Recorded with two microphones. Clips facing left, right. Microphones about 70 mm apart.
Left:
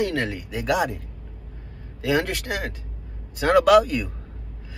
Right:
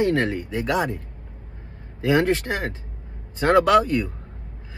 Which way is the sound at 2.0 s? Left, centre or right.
Centre.